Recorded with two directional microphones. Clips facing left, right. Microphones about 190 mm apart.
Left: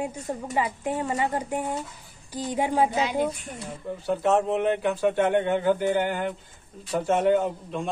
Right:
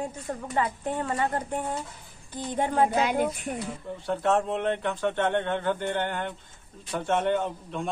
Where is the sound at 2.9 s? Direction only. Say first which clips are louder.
Even; 55° right (ahead or behind).